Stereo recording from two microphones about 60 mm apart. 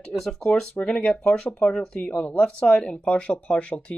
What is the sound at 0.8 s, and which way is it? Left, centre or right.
Speech, centre.